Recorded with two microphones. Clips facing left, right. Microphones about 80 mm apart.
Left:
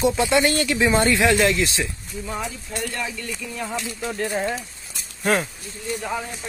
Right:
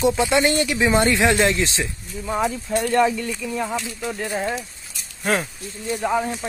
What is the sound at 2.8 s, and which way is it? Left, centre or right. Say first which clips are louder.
Speech: right 11 dB; right.